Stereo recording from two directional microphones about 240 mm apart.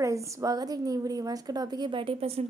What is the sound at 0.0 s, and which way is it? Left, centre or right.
A woman's voice, centre.